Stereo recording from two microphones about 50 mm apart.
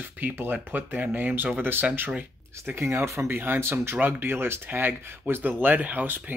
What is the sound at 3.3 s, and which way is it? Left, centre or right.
Speech, right.